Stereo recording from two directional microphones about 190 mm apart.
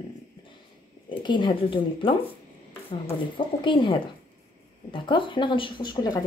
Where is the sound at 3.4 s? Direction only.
25° left (ahead or behind).